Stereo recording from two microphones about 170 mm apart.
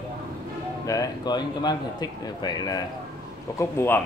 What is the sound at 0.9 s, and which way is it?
A man's voice, 20° left (ahead or behind).